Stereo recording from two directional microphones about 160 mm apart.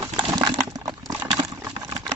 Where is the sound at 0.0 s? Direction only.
25° right (ahead or behind).